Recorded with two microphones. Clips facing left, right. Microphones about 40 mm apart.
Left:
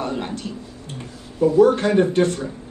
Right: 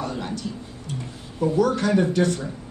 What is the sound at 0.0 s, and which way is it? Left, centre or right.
A woman's voice, left.